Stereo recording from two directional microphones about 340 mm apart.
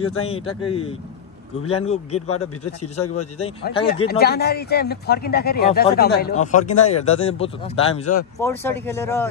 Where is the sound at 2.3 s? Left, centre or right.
Left.